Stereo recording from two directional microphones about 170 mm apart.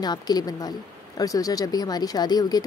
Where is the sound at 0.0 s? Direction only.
25° left (ahead or behind).